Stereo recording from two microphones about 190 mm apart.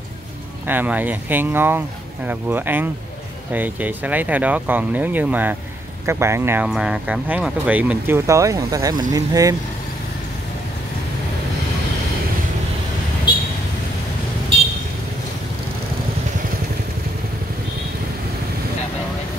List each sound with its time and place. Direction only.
0.7 s speech: 10° right (ahead or behind)